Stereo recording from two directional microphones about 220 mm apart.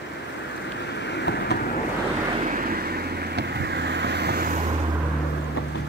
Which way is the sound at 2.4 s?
40° right (ahead or behind).